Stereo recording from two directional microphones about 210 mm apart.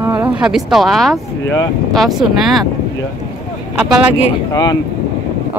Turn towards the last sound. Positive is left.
turn(degrees=15)  # may be behind; listen again after turning